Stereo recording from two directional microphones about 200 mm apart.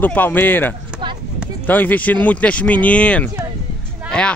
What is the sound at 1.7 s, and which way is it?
Speech, 10° left (ahead or behind).